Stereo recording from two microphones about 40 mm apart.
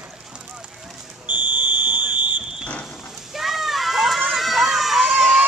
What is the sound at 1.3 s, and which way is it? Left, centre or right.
Fire alarm, right.